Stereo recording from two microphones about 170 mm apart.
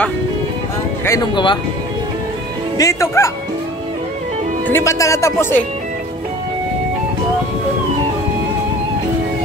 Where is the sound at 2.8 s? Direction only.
15° left (ahead or behind).